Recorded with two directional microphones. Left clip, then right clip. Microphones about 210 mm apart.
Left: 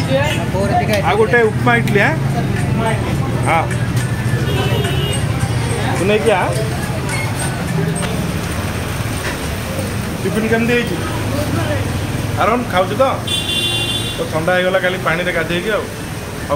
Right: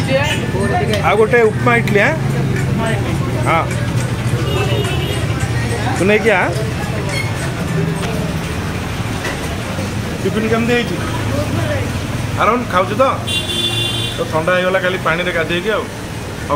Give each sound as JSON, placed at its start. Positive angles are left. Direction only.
{"t": 1.0, "sound": "speech", "side_deg": -20}
{"t": 6.0, "sound": "speech", "side_deg": -20}
{"t": 12.4, "sound": "speech", "side_deg": -15}
{"t": 14.5, "sound": "speech", "side_deg": -15}